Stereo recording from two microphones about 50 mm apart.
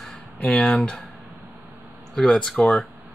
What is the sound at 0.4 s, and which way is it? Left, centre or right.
Speech, left.